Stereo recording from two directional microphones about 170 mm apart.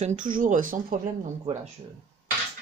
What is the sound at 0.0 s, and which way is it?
Speech, 50° right (ahead or behind).